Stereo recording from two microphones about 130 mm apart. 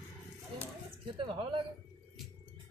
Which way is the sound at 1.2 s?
40° right (ahead or behind).